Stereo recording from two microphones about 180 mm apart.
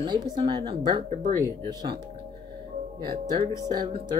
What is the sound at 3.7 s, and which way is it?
Speech, 20° right (ahead or behind).